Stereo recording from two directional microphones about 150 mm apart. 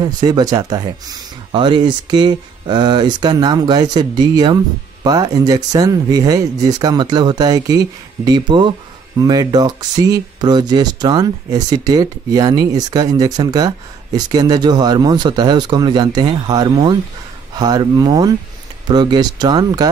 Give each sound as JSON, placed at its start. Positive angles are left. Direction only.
{"t": 0.0, "sound": "speech", "side_deg": -25}